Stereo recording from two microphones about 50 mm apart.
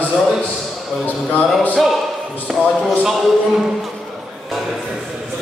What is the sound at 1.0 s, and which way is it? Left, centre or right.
Speech, left.